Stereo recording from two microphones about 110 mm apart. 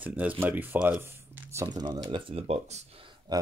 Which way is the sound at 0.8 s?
20° right (ahead or behind).